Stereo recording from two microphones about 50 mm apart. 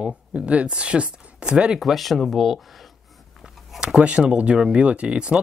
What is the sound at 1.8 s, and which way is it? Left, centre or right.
Speech, centre.